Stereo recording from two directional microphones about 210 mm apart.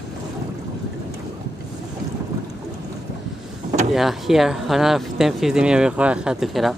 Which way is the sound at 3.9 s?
Centre (ahead or behind).